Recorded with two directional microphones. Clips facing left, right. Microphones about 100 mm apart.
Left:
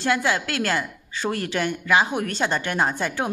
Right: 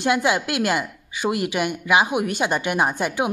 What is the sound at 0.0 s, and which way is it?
A woman's voice, 20° right (ahead or behind).